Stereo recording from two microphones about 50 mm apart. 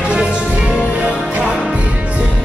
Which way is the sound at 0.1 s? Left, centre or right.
Centre.